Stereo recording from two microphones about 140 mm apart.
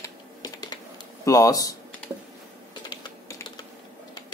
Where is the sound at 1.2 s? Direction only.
25° left (ahead or behind).